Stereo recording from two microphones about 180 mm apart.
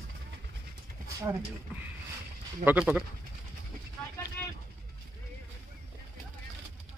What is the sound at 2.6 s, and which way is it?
Speech, 5° right (ahead or behind).